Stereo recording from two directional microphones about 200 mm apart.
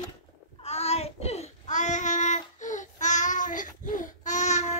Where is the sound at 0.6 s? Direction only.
30° left (ahead or behind).